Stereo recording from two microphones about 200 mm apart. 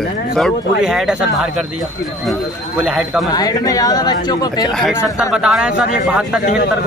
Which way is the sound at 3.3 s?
20° left (ahead or behind).